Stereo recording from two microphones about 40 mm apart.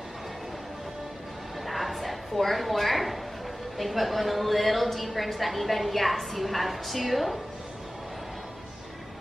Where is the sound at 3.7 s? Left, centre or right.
Centre.